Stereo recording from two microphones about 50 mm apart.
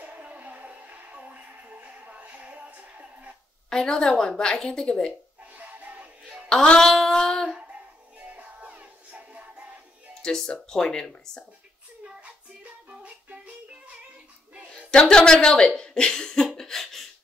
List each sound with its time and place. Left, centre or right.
0.0 s music: right
3.7 s a woman's voice: centre
5.5 s music: right
6.5 s a sound: centre
8.2 s music: right
10.2 s a woman's voice: centre
12.0 s child singing: right
14.7 s speech: centre
16.5 s a sound: centre